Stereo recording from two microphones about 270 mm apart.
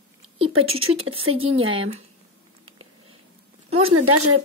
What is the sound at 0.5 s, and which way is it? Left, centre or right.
Speech, right.